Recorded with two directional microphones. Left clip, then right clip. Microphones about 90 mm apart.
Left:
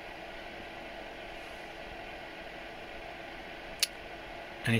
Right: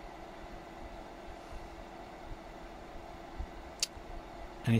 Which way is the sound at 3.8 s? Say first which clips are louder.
Left 5 dB; 35° right (ahead or behind).